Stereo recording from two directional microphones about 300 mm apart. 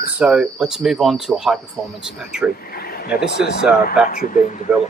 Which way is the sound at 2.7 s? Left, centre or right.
Left.